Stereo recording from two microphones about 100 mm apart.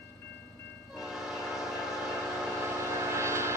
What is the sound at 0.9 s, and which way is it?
Train horn, 5° right (ahead or behind).